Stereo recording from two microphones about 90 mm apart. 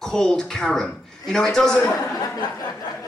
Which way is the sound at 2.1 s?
40° left (ahead or behind).